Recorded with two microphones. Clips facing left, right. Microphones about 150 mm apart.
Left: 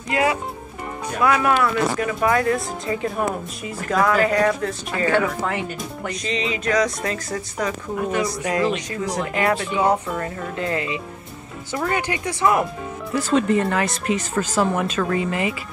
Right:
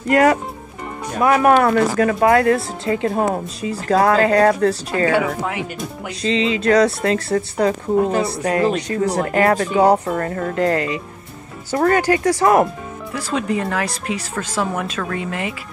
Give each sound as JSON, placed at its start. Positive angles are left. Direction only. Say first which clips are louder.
{"t": 0.1, "sound": "speech", "louder": "right 7 dB", "side_deg": -50}
{"t": 1.2, "sound": "speech", "louder": "right 4 dB", "side_deg": -40}
{"t": 1.5, "sound": "speech", "louder": "right 5 dB", "side_deg": -55}
{"t": 3.2, "sound": "speech", "louder": "right 5 dB", "side_deg": -30}
{"t": 5.4, "sound": "speech", "louder": "right 1 dB", "side_deg": -5}
{"t": 6.2, "sound": "speech", "louder": "right 8 dB", "side_deg": -30}
{"t": 10.1, "sound": "speech", "louder": "right 6 dB", "side_deg": -50}
{"t": 13.1, "sound": "speech", "louder": "left 3 dB", "side_deg": 0}